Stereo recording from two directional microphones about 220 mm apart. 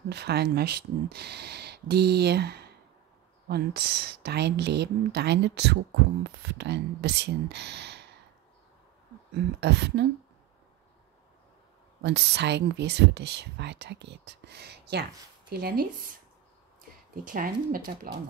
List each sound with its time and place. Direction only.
0.1 s speech: 50° right (ahead or behind)
9.6 s speech: 50° right (ahead or behind)
12.0 s speech: 50° right (ahead or behind)